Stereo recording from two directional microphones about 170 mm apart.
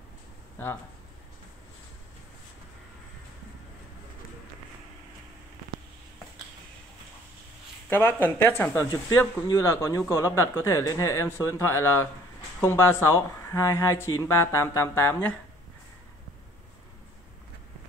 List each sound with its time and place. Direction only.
7.9 s speech: 10° left (ahead or behind)